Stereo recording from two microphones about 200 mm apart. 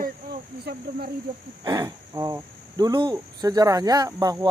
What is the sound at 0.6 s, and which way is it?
Speech, 55° right (ahead or behind).